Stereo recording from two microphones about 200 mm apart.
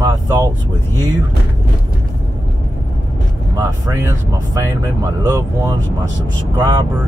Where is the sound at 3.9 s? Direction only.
15° right (ahead or behind).